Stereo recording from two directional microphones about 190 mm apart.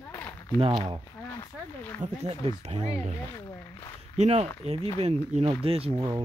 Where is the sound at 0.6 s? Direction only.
25° right (ahead or behind).